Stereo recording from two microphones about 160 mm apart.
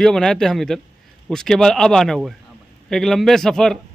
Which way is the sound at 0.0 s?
5° left (ahead or behind).